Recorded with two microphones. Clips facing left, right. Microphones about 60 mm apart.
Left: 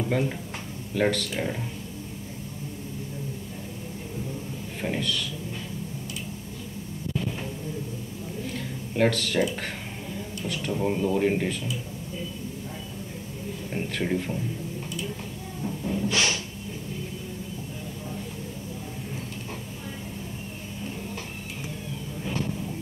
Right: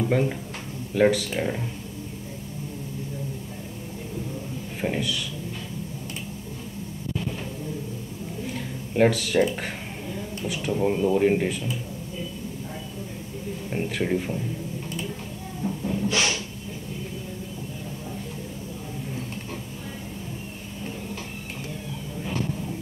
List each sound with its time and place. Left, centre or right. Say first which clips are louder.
0.0 s speech: right 3 dB; centre
4.8 s speech: right 2 dB; centre
8.5 s a sound: right 4 dB; centre
10.4 s speech: right 3 dB; centre
13.7 s speech: right 2 dB; centre
15.6 s music: right 2 dB; centre
16.1 s a sound: right 1 dB; right